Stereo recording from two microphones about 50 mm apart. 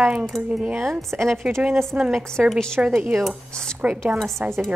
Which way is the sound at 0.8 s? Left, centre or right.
Centre.